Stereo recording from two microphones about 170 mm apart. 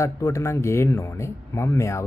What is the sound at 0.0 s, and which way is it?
Speech, 15° left (ahead or behind).